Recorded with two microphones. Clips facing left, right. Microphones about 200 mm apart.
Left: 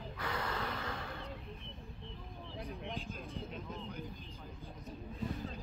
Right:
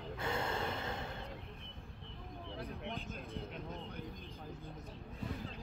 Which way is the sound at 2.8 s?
55° right (ahead or behind).